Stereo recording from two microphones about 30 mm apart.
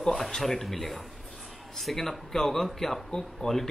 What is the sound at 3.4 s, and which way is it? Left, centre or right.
Speech, left.